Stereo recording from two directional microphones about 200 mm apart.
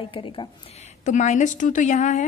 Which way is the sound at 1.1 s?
40° left (ahead or behind).